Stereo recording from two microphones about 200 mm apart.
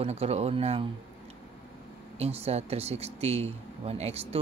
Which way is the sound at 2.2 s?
30° right (ahead or behind).